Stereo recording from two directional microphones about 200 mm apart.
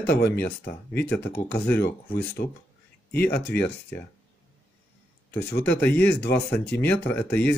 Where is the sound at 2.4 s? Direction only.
45° left (ahead or behind).